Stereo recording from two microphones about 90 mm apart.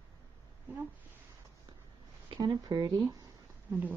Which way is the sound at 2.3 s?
45° right (ahead or behind).